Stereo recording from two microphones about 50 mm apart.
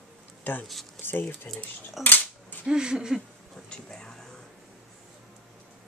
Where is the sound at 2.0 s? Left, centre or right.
Left.